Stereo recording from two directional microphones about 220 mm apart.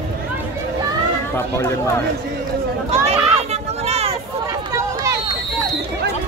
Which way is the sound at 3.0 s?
30° right (ahead or behind).